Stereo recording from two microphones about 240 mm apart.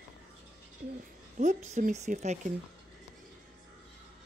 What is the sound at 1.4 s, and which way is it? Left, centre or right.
Speech, right.